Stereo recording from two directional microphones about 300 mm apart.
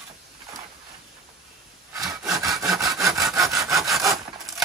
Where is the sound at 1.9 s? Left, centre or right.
Centre.